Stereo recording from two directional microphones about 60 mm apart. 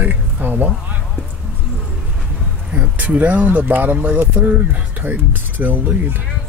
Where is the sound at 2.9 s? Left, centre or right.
Right.